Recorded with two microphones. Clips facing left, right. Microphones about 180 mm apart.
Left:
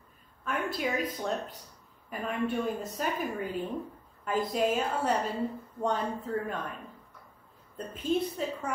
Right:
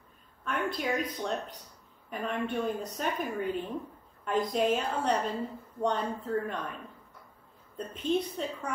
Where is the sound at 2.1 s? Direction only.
5° left (ahead or behind).